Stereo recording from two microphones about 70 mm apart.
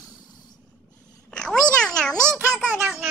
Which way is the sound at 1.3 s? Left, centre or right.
Centre.